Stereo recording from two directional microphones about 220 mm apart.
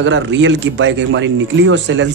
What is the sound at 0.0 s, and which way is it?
Speech, 55° right (ahead or behind).